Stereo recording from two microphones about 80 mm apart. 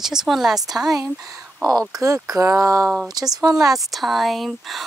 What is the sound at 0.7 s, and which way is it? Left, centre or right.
Speech, centre.